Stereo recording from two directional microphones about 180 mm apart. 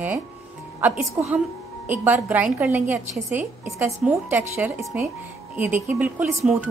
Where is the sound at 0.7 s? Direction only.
10° right (ahead or behind).